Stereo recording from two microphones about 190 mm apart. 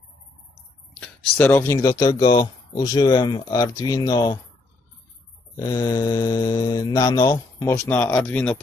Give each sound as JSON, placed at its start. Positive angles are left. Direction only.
{"t": 1.3, "sound": "speech", "side_deg": 10}
{"t": 5.6, "sound": "mantra", "side_deg": 20}